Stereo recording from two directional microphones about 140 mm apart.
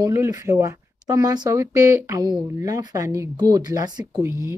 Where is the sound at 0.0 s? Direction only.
20° right (ahead or behind).